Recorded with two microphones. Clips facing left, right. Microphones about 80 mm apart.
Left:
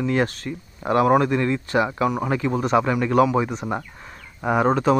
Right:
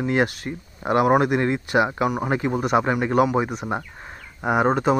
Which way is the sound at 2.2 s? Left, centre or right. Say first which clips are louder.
Even; right.